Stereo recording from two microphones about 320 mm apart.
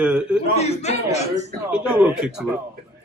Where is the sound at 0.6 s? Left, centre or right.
Centre.